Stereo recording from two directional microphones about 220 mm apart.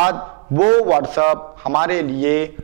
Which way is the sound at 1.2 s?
20° right (ahead or behind).